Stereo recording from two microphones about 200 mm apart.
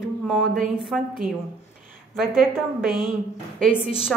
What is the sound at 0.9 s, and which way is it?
Speech, centre (ahead or behind).